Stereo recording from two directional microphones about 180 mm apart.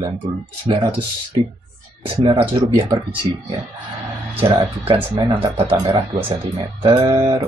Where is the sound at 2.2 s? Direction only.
35° right (ahead or behind).